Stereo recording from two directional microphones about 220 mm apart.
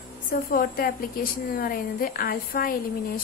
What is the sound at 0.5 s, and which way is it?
A woman's voice, 40° left (ahead or behind).